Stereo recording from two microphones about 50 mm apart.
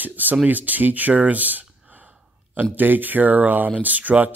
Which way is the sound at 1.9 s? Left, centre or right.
Right.